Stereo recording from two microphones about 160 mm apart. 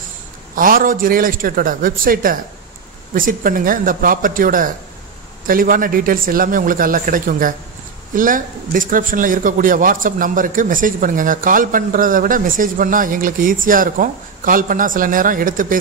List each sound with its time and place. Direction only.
0.6 s a man's voice: 60° right (ahead or behind)